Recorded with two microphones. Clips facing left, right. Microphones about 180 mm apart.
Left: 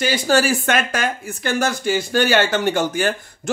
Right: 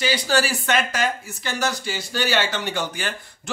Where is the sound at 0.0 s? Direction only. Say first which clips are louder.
Left 4 dB; 50° left (ahead or behind).